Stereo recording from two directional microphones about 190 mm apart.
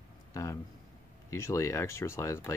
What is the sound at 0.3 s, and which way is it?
Speech, 15° left (ahead or behind).